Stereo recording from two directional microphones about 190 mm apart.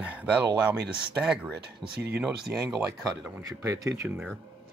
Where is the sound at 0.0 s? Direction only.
5° right (ahead or behind).